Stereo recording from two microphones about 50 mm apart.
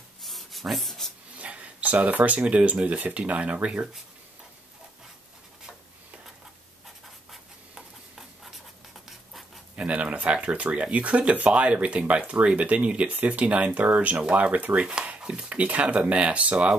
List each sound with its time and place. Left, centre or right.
0.2 s rub: centre
1.3 s a sound: right
2.4 s speech: right
9.8 s speech: right